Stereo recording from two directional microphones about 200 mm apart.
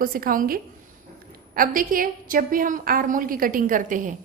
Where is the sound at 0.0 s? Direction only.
45° right (ahead or behind).